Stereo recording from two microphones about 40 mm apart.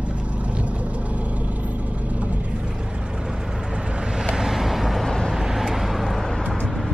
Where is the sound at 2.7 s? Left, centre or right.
Right.